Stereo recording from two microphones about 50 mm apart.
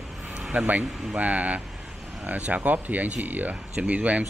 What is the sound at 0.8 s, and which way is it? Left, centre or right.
Speech, centre.